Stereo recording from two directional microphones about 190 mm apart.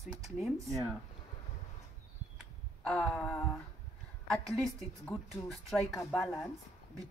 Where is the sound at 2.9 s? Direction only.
5° left (ahead or behind).